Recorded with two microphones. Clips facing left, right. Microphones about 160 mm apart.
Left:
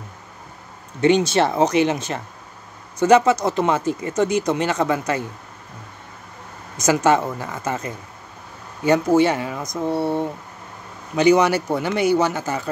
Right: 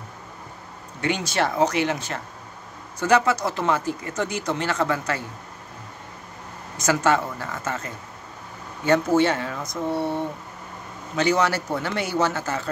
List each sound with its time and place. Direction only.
1.0 s speech: 25° left (ahead or behind)
6.8 s speech: 20° left (ahead or behind)
11.1 s speech: 15° left (ahead or behind)